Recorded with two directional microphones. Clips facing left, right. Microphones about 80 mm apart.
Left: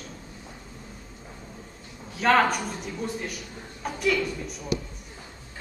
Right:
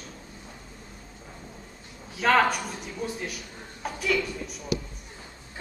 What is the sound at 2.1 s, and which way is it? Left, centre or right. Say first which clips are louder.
Speech: left 1 dB; centre.